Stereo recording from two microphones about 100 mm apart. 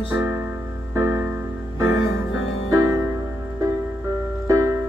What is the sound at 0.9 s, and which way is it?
Music, 25° right (ahead or behind).